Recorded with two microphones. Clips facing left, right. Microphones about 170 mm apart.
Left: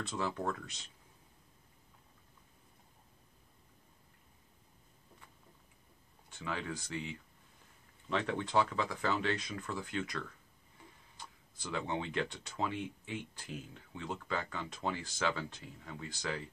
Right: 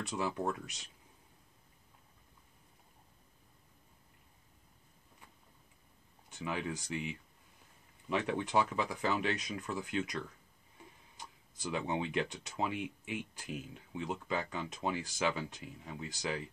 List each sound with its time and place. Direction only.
0.0 s speech: 15° right (ahead or behind)
6.3 s speech: 15° right (ahead or behind)